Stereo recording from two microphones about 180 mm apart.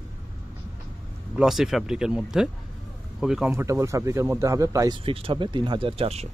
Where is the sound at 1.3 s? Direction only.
Centre (ahead or behind); by 5.0 s 20° right (ahead or behind).